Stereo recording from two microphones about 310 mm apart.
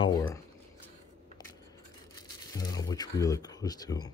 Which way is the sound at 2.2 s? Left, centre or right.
Centre.